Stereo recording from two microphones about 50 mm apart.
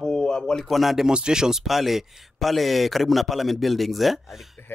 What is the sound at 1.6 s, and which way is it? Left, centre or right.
A man's voice, centre.